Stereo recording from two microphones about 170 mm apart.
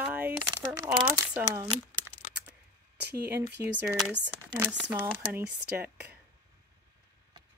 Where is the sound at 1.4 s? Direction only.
25° right (ahead or behind).